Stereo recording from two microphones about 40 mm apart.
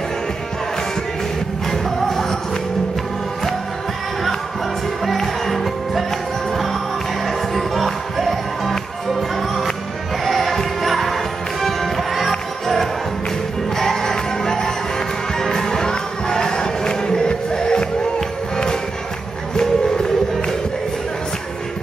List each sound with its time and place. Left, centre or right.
1.7 s music: centre
5.1 s music: centre
13.7 s music: centre
19.5 s music: centre